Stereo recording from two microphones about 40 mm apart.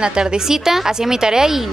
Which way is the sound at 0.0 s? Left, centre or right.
Right.